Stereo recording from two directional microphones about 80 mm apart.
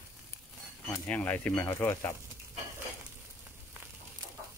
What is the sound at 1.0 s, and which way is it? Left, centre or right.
Speech, left.